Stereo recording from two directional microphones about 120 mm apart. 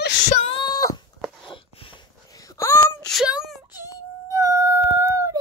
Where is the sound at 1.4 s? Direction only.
45° left (ahead or behind).